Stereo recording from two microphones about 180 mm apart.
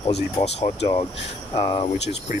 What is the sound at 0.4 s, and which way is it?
Speech, 30° left (ahead or behind).